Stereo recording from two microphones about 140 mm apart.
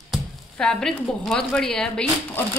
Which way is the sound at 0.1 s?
5° left (ahead or behind).